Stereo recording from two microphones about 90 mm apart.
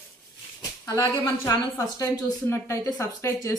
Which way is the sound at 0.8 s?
40° left (ahead or behind).